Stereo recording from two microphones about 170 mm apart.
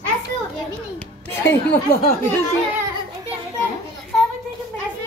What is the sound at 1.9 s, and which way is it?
Speech, 55° left (ahead or behind).